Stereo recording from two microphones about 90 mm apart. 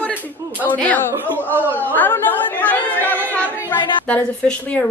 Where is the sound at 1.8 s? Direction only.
20° left (ahead or behind).